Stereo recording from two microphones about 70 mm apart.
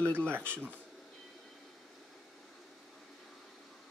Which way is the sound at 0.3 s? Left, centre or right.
Right.